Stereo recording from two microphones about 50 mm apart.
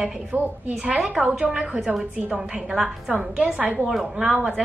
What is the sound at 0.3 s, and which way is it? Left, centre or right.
Speech, right.